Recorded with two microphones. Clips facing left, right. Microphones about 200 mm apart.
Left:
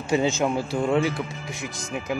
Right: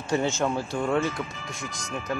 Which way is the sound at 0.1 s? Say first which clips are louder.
Left 3 dB; 10° left (ahead or behind).